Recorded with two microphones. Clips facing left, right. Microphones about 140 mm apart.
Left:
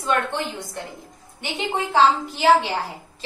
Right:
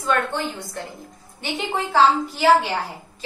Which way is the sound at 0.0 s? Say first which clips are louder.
Right 1 dB; 20° left (ahead or behind).